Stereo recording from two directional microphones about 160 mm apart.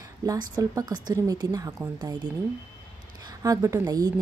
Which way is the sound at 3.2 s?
20° right (ahead or behind).